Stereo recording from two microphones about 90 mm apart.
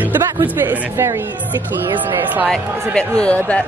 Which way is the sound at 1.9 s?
20° right (ahead or behind).